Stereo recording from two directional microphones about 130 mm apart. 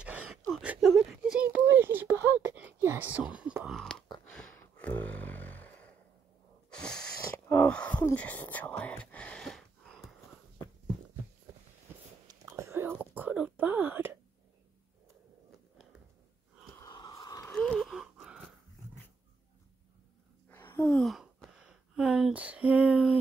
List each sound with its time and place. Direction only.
0.0 s gasp: 10° right (ahead or behind)
0.5 s whimper: 5° right (ahead or behind)
3.7 s a sound: 5° left (ahead or behind)
6.7 s wheeze: 5° left (ahead or behind)
7.3 s whispering: 15° left (ahead or behind)
12.4 s whispering: 20° right (ahead or behind)
16.7 s a sound: 25° left (ahead or behind)
17.6 s wheeze: 10° left (ahead or behind)
17.8 s gasp: 5° right (ahead or behind)
20.4 s a sound: 15° left (ahead or behind); by 23.1 s 5° right (ahead or behind)